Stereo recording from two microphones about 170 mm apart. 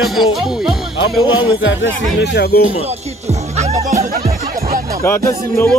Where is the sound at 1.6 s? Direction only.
90° left; by 2.6 s 75° left (ahead or behind).